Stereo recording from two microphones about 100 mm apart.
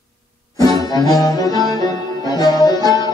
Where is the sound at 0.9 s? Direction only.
40° left (ahead or behind).